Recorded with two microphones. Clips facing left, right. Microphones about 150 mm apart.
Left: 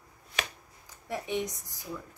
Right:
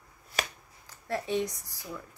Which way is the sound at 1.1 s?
15° left (ahead or behind).